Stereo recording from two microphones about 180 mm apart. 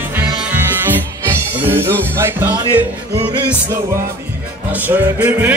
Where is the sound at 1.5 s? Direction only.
10° right (ahead or behind).